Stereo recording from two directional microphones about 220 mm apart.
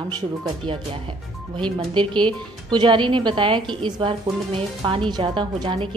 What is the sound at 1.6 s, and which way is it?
Speech, 20° right (ahead or behind).